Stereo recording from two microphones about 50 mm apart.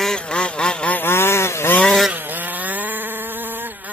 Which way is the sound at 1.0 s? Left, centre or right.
Left.